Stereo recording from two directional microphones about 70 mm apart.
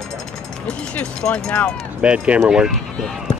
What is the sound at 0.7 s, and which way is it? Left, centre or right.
Speech, centre.